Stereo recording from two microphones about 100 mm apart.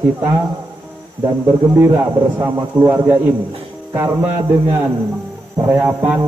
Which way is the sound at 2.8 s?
20° right (ahead or behind).